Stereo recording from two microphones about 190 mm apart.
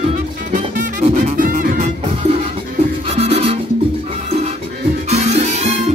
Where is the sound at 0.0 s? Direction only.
40° right (ahead or behind).